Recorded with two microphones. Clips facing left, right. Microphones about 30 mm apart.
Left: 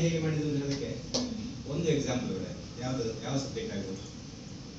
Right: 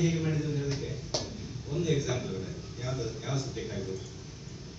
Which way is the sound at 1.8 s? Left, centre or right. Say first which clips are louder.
Even; left.